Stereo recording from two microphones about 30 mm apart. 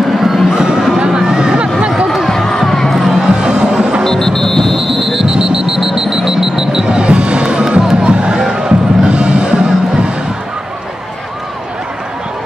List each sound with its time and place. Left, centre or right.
0.2 s a sound: centre
0.6 s a sound: right
2.0 s run: centre
2.3 s run: centre
2.9 s music: centre
3.2 s music: right
4.0 s music: centre
4.7 s a sound: centre
5.3 s alarm clock: centre
7.0 s a sound: right
8.0 s music: right
8.4 s music: centre